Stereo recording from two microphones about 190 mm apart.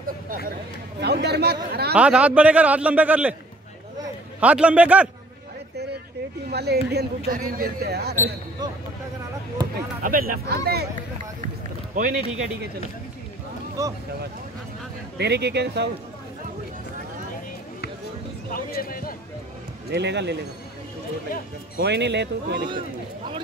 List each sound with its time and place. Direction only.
1.0 s speech: 60° right (ahead or behind)
2.0 s a man's voice: 5° right (ahead or behind)
4.4 s a man's voice: 5° right (ahead or behind)
6.5 s speech: 60° right (ahead or behind)
7.2 s speech: 50° right (ahead or behind)
10.0 s speech: 50° right (ahead or behind)
11.4 s run: 45° right (ahead or behind)
13.8 s a man's voice: 15° right (ahead or behind)
15.1 s speech: 60° right (ahead or behind)
18.5 s speech: 50° left (ahead or behind)
19.9 s speech: 65° right (ahead or behind)
21.7 s speech: 65° right (ahead or behind)